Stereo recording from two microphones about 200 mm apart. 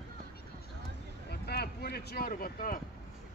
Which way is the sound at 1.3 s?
55° left (ahead or behind).